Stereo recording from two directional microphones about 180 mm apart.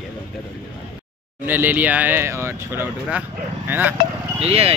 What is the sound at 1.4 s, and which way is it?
Speech, 10° right (ahead or behind).